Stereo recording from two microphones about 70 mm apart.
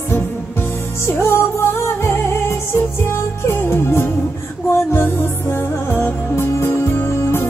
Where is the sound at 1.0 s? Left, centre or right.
Left.